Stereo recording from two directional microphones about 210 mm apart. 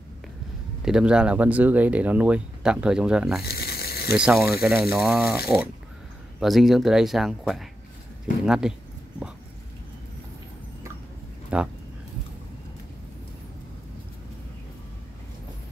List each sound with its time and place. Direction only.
0.8 s speech: 5° right (ahead or behind)
3.4 s a sound: 50° left (ahead or behind)
4.2 s speech: 5° right (ahead or behind)
6.4 s speech: centre (ahead or behind)
11.5 s speech: 5° right (ahead or behind)